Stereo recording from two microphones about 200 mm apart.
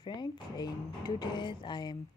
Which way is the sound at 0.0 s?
25° left (ahead or behind).